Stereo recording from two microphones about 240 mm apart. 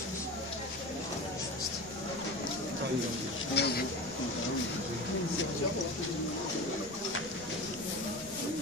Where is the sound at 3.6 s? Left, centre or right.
Left.